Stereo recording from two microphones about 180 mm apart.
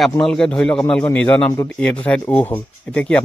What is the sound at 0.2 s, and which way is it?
Speech, 5° left (ahead or behind).